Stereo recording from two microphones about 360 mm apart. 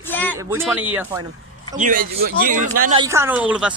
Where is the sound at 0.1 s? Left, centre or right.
Centre.